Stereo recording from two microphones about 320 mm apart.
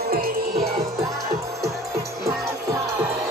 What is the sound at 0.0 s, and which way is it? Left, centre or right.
Music, right.